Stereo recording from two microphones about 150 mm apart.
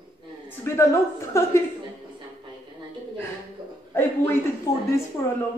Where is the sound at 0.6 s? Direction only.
20° left (ahead or behind).